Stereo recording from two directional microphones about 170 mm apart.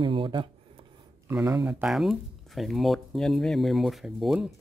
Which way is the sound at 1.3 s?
15° right (ahead or behind).